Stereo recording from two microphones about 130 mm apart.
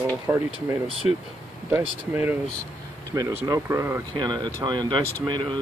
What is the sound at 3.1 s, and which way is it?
Speech, 25° right (ahead or behind).